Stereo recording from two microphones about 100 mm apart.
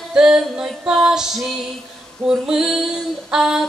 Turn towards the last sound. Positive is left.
turn(degrees=-5)  # may be behind; listen again after turning